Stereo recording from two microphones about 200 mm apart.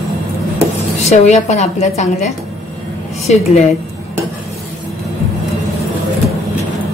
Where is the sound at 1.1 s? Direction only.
35° left (ahead or behind).